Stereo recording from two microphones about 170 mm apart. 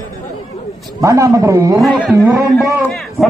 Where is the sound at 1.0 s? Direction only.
20° right (ahead or behind).